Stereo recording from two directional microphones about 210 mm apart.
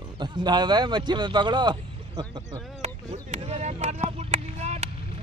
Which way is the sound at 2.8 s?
30° right (ahead or behind).